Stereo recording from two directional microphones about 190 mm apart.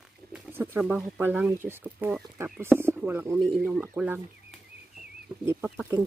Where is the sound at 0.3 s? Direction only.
10° right (ahead or behind).